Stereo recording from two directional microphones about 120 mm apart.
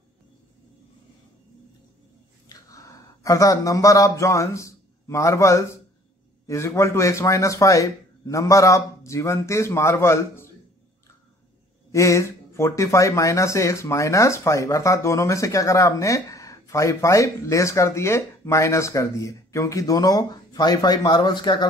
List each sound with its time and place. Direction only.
2.4 s a sound: 30° left (ahead or behind)
4.2 s a man's voice: 25° left (ahead or behind)
11.9 s speech: 25° left (ahead or behind)